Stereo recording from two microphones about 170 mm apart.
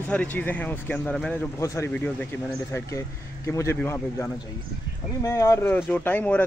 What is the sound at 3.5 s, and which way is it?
Speech, 15° left (ahead or behind).